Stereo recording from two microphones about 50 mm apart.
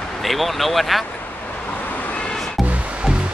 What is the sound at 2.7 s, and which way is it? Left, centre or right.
Music, right.